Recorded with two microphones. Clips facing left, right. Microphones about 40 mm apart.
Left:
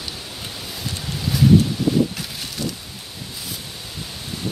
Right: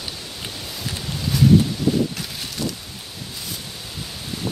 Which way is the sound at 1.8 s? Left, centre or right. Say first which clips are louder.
Left 1 dB; centre.